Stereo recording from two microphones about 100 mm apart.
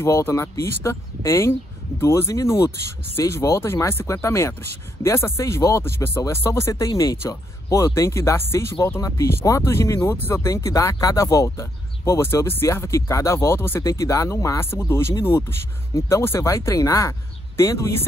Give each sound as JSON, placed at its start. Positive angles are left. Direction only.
{"t": 0.0, "sound": "speech", "side_deg": 30}